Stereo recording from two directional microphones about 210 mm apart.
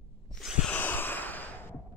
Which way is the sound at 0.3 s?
Centre (ahead or behind).